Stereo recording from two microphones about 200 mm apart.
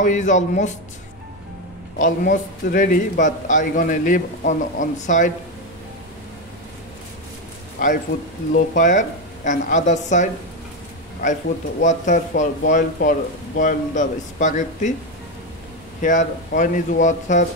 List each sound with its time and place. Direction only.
0.0 s a man's voice: 40° left (ahead or behind)
2.0 s a man's voice: 40° left (ahead or behind)
8.7 s a man's voice: 40° left (ahead or behind)
16.0 s a man's voice: 40° left (ahead or behind)